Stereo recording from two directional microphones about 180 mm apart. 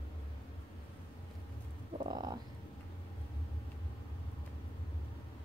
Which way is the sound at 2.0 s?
20° right (ahead or behind).